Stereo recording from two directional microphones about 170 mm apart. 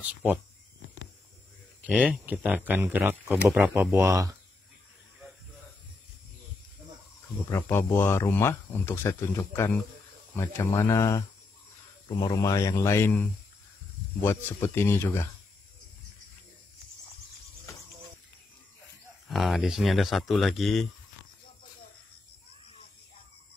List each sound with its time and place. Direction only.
1.9 s speech: 5° right (ahead or behind)
7.4 s speech: 15° left (ahead or behind)
19.2 s speech: centre (ahead or behind)